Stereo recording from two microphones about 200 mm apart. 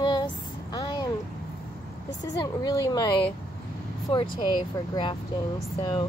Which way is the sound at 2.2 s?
20° left (ahead or behind).